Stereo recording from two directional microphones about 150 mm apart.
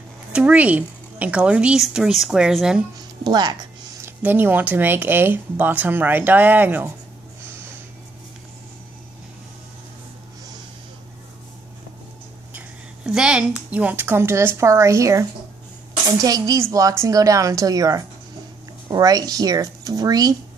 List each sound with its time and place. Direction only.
0.3 s speech: 10° right (ahead or behind)
3.3 s speech: 30° right (ahead or behind)
4.0 s speech: 15° right (ahead or behind)
12.5 s a sound: 5° right (ahead or behind)
13.7 s speech: 10° right (ahead or behind)